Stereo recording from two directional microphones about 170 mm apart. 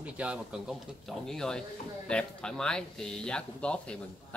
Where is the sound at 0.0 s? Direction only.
5° right (ahead or behind).